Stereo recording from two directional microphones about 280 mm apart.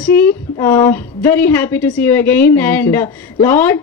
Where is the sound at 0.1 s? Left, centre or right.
Left.